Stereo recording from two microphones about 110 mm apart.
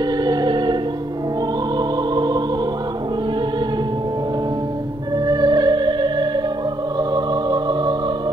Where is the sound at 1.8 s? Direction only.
40° right (ahead or behind).